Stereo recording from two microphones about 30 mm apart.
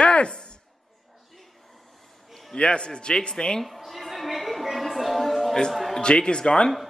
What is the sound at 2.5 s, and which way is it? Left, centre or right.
Speech, left.